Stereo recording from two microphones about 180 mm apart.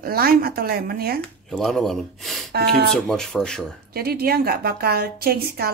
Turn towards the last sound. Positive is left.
turn(degrees=-60)  # may be behind; listen again after turning